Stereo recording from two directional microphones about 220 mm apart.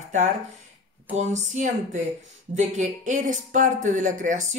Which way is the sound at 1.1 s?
35° right (ahead or behind).